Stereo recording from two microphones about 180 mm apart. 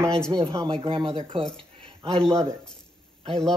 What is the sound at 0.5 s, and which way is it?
Speech, 30° right (ahead or behind).